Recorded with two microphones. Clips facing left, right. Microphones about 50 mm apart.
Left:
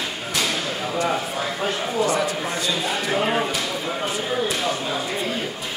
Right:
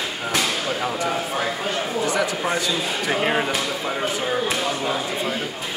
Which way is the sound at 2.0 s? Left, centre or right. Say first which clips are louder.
Even; right.